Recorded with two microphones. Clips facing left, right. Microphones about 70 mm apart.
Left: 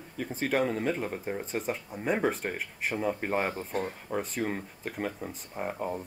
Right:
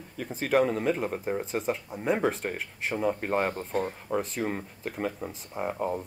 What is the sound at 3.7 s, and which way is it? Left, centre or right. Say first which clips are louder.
Speech: right 3 dB; centre.